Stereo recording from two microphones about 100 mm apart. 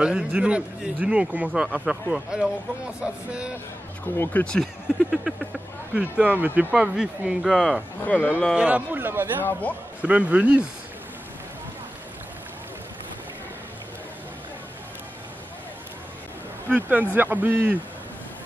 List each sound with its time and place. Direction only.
0.0 s speech: 10° right (ahead or behind)
4.2 s speech: 15° left (ahead or behind)
4.8 s a sound: 5° right (ahead or behind)
5.9 s speech: 15° right (ahead or behind)
8.0 s speech: 15° left (ahead or behind)
8.5 s speech: 15° right (ahead or behind)
9.4 s speech: 15° left (ahead or behind)
10.0 s speech: 15° right (ahead or behind)
16.6 s speech: 15° right (ahead or behind)